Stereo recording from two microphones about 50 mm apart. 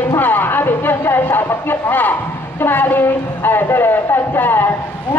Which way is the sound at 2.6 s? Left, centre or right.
Left.